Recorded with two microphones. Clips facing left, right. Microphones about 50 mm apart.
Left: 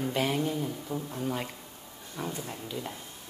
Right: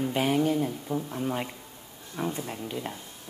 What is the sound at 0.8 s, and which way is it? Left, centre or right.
Speech, centre.